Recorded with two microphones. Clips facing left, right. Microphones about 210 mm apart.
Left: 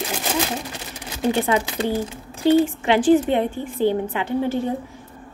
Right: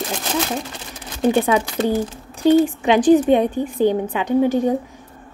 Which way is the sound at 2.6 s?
15° right (ahead or behind).